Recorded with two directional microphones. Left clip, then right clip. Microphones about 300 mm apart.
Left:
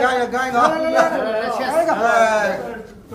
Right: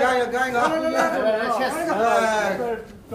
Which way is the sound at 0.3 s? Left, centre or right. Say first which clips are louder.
Left 4 dB; left.